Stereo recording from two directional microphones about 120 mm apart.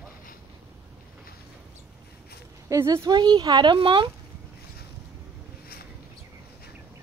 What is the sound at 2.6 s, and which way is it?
Speech, 25° right (ahead or behind).